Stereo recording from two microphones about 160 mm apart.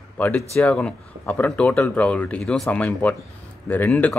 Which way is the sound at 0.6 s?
5° left (ahead or behind).